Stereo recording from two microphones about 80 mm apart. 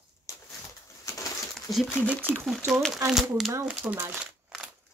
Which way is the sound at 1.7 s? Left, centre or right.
Left.